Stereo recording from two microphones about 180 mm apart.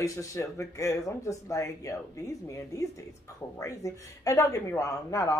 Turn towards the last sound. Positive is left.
turn(degrees=20)  # may be behind; listen again after turning